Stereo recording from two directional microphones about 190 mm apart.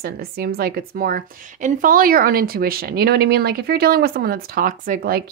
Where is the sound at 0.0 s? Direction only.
55° right (ahead or behind).